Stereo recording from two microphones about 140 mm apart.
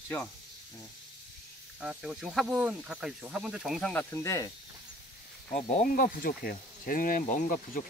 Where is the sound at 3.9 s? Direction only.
20° left (ahead or behind).